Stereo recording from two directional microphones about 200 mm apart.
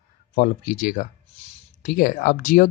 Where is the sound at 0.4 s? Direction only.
45° left (ahead or behind).